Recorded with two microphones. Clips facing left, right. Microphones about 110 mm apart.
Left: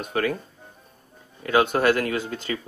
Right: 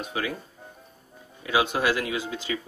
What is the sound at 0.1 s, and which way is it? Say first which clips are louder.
Speech: left 7 dB; 55° left (ahead or behind).